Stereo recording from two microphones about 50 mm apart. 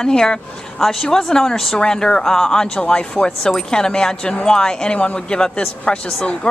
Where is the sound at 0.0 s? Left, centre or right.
Centre.